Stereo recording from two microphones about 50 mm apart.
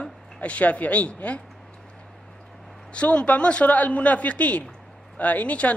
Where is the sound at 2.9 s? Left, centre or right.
Left.